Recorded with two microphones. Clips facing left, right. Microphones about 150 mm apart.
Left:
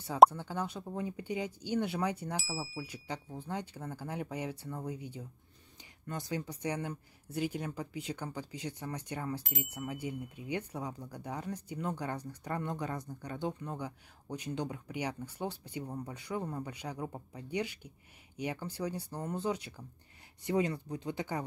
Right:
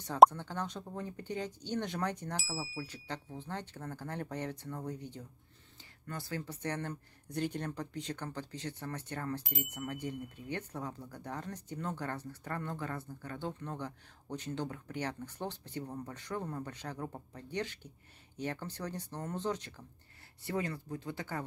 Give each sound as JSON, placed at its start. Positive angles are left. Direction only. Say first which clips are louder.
{"t": 0.0, "sound": "speech", "louder": "even", "side_deg": 10}
{"t": 3.3, "sound": "speech", "louder": "left 3 dB", "side_deg": 10}